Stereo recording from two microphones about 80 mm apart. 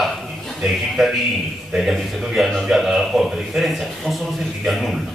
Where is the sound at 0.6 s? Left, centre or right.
Centre.